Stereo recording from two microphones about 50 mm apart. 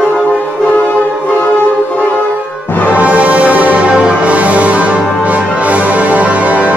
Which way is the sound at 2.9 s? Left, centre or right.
Right.